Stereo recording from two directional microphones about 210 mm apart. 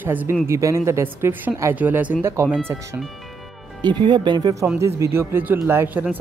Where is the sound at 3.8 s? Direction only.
20° right (ahead or behind).